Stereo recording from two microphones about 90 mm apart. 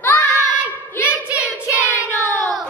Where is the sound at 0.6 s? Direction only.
15° right (ahead or behind).